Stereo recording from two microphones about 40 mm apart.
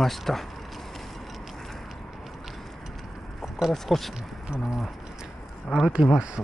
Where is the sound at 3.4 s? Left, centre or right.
Centre.